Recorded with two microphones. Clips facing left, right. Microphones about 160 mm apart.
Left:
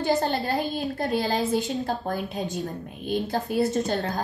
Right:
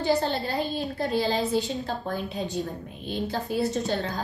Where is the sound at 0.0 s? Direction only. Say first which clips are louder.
Left 1 dB; 50° left (ahead or behind).